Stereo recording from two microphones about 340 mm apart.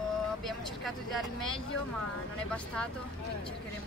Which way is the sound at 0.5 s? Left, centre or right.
Centre.